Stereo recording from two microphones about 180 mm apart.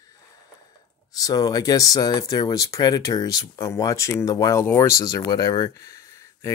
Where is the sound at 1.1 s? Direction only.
20° left (ahead or behind).